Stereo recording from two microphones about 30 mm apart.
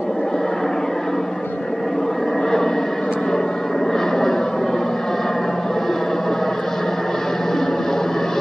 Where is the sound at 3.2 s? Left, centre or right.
Left.